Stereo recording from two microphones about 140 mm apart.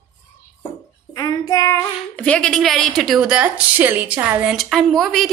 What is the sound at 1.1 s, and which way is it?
Child singing, 25° left (ahead or behind).